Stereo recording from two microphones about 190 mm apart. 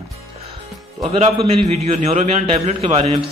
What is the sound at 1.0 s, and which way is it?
A man's voice, 30° right (ahead or behind).